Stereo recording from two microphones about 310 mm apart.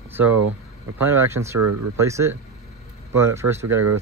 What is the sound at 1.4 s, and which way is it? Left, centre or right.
Speech, right.